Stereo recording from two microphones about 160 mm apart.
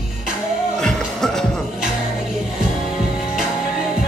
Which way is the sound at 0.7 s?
5° left (ahead or behind).